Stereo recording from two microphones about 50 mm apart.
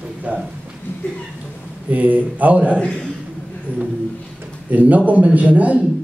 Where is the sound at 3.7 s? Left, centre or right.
Right.